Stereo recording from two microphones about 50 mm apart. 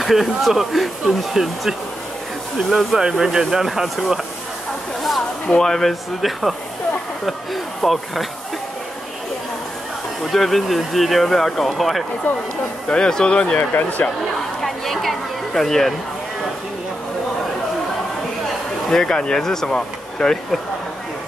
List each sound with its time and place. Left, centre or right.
0.0 s speech: centre
3.0 s speech: centre
5.5 s speech: centre
10.3 s speech: centre
12.8 s speech: centre
14.6 s a sound: centre
18.9 s speech: centre